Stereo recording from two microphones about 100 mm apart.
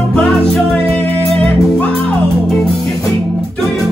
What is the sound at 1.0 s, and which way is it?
Music, 20° left (ahead or behind).